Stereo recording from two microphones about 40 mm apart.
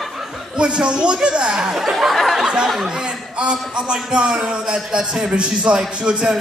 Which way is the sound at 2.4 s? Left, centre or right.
Right.